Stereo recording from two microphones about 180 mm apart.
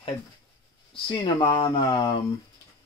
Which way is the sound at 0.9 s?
25° left (ahead or behind).